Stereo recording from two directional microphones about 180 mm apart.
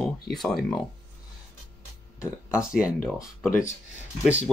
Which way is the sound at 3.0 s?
15° left (ahead or behind).